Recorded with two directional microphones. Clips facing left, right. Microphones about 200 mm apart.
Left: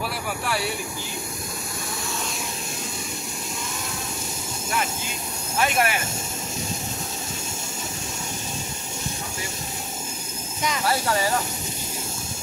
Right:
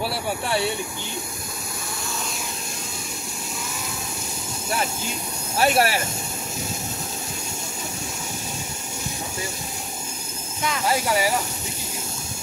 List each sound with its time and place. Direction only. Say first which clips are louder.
0.0 s speech: right 3 dB; 30° right (ahead or behind)
5.6 s speech: right 3 dB; 35° right (ahead or behind)
10.9 s speech: right 2 dB; 10° right (ahead or behind)